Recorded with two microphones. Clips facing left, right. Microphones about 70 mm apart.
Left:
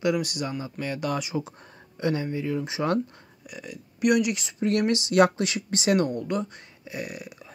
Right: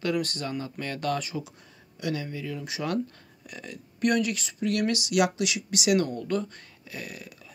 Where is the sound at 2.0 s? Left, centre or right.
Left.